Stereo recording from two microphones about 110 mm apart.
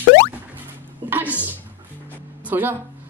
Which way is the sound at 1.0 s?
15° right (ahead or behind).